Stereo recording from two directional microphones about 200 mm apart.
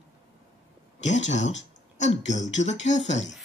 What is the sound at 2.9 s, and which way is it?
Speech, 40° left (ahead or behind).